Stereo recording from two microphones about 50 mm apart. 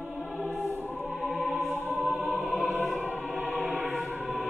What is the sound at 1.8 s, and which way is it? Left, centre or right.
Music, right.